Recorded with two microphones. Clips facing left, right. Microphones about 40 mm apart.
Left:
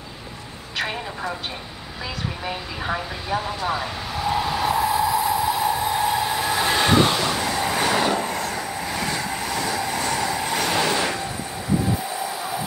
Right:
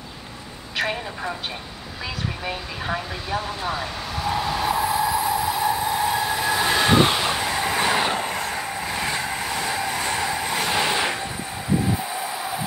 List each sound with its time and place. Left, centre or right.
0.7 s speech: centre
2.4 s speech: centre
5.5 s train: centre
7.0 s vehicle: right
9.5 s train: right
9.9 s vehicle: right
10.3 s vehicle: centre